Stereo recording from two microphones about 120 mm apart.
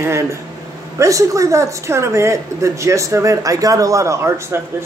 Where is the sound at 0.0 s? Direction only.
20° right (ahead or behind).